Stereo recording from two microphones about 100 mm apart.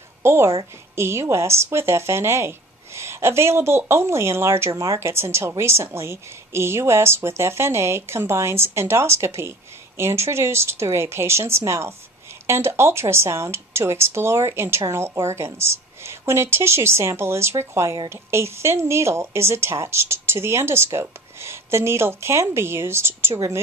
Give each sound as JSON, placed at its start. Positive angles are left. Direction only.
{"t": 0.2, "sound": "a woman's voice", "side_deg": -25}